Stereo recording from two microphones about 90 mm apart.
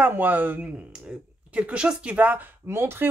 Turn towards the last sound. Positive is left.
turn(degrees=-25)  # may be behind; listen again after turning